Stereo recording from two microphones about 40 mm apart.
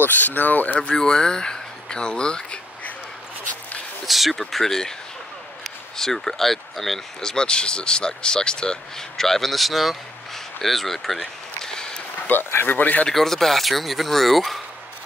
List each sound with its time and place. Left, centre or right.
0.0 s speech: left
0.9 s speech: centre
4.0 s speech: centre
7.2 s speech: left
9.1 s speech: centre
11.6 s a sound: centre
12.3 s speech: left
12.6 s speech: left
13.1 s speech: centre